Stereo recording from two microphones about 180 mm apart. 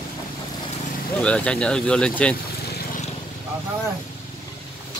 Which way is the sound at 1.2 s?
5° left (ahead or behind).